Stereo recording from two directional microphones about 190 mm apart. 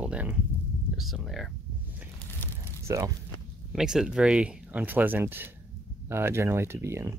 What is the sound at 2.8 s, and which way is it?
Speech, 15° right (ahead or behind).